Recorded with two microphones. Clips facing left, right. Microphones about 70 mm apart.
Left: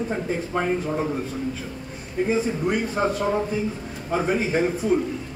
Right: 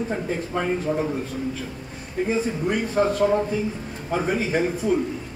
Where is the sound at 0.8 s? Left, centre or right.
Centre.